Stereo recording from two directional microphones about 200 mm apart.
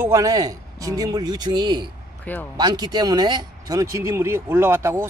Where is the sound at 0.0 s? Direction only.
15° right (ahead or behind).